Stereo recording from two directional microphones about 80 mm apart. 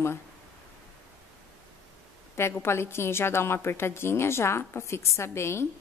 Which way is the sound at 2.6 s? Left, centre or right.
Left.